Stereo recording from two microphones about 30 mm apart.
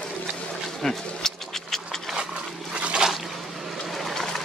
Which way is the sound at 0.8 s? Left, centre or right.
Centre.